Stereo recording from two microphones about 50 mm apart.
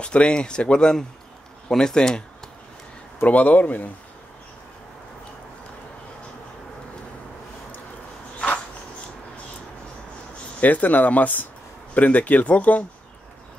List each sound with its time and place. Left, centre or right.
0.0 s speech: centre
3.3 s speech: left
10.6 s speech: left